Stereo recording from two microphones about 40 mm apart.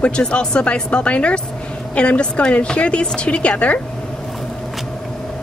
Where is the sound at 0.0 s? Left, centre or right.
Left.